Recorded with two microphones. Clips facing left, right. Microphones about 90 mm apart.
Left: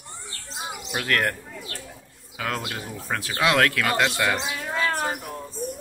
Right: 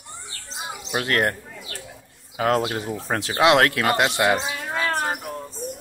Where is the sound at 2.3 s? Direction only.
30° right (ahead or behind); by 4.8 s 15° right (ahead or behind).